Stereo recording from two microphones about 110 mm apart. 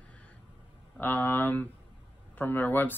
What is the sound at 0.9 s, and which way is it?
Speech, 15° left (ahead or behind).